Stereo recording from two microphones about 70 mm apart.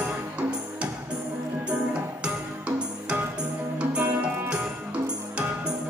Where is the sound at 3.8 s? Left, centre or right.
Centre.